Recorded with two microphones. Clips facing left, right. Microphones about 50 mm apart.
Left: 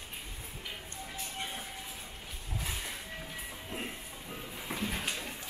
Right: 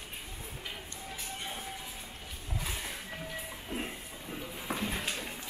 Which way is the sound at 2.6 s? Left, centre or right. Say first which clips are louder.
Even; centre.